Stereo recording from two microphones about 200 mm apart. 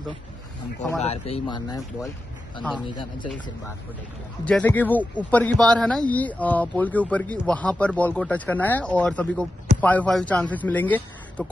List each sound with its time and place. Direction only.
1.0 s speech: 30° left (ahead or behind)
2.9 s speech: 25° left (ahead or behind)
4.5 s speech: 5° left (ahead or behind)